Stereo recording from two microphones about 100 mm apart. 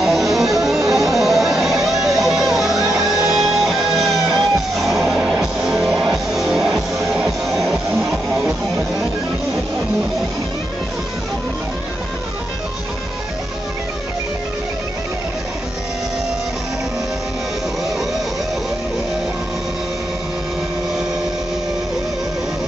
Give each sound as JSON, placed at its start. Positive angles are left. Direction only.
{"t": 0.0, "sound": "music", "side_deg": 0}